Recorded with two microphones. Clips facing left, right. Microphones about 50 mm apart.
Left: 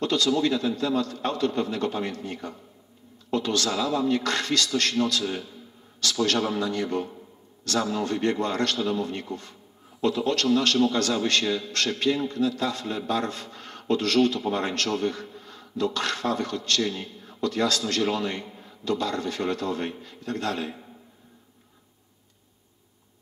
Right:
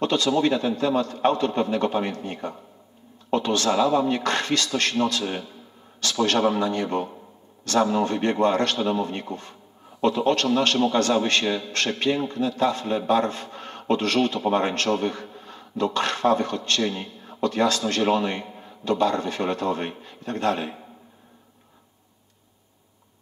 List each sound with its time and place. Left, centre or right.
0.0 s a man's voice: right